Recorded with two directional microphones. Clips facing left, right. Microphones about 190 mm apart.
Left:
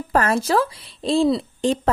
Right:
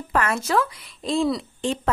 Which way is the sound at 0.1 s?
35° left (ahead or behind).